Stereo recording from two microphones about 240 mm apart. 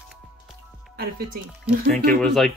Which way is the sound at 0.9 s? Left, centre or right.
Right.